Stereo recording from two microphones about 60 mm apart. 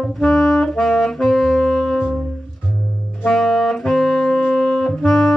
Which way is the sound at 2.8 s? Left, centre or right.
Left.